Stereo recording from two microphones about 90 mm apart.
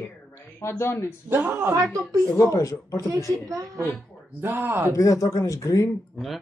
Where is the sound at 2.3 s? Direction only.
35° left (ahead or behind).